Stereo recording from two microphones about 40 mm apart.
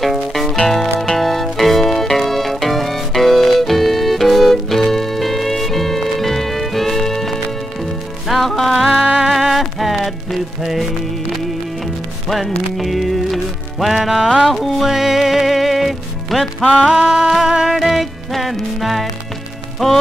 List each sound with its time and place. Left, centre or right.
0.0 s music: centre
12.7 s music: centre
14.9 s music: centre
16.9 s music: right
17.7 s music: centre